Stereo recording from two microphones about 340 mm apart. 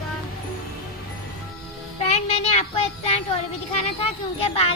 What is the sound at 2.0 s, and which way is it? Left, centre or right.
Speech, centre.